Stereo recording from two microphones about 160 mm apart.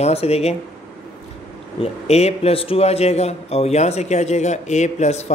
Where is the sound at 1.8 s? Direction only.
40° left (ahead or behind).